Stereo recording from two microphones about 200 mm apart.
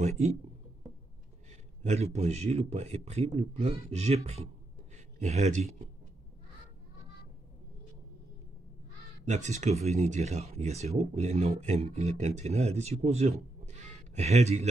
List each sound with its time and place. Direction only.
0.0 s speech: 35° right (ahead or behind)
1.8 s speech: 35° right (ahead or behind)
9.2 s speech: 35° right (ahead or behind)